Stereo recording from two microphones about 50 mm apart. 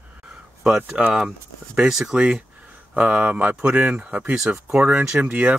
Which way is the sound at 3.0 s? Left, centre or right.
Right.